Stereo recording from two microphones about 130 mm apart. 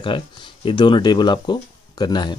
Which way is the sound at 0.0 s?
40° left (ahead or behind).